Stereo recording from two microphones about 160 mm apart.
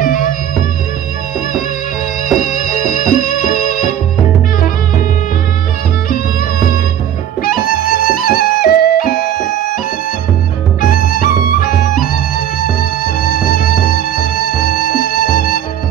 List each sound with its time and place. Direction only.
0.0 s music: 60° left (ahead or behind)
2.4 s music: 55° left (ahead or behind)
7.4 s music: 65° left (ahead or behind)
10.8 s music: 60° left (ahead or behind)
13.2 s music: 65° left (ahead or behind)